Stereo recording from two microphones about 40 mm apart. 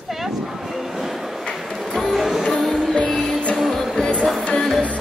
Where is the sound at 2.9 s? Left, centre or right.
Left.